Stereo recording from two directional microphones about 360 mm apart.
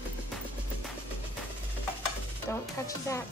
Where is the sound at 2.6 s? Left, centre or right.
Centre.